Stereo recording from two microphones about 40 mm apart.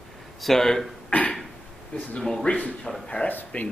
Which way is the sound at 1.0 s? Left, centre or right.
Left.